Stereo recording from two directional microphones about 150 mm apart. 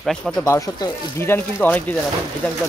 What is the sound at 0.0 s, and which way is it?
Speech, centre (ahead or behind).